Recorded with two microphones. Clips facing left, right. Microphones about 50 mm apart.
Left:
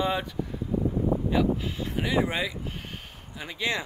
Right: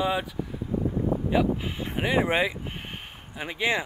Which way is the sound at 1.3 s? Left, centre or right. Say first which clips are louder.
Right 1 dB; right.